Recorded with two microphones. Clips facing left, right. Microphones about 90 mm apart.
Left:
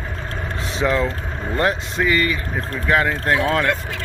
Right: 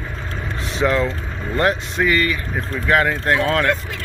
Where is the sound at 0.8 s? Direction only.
5° left (ahead or behind).